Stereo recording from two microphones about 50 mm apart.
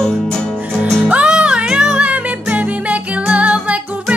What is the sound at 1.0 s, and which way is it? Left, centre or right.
Music, right.